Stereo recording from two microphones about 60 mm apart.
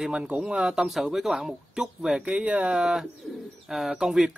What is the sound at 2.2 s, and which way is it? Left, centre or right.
Speech, right.